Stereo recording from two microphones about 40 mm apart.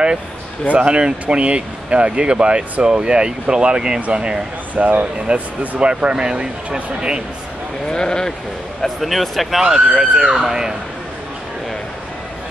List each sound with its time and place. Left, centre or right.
0.7 s speech: right
4.7 s speech: right; by 7.2 s centre
7.9 s speech: centre
8.8 s speech: centre